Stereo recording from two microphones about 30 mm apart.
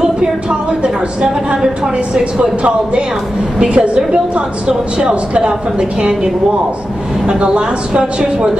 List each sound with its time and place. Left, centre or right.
0.0 s a sound: right
2.1 s speech: centre
2.6 s a woman's voice: right